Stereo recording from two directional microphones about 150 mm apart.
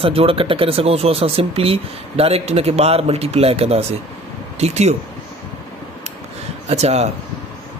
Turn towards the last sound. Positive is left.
turn(degrees=-45)  # may be behind; listen again after turning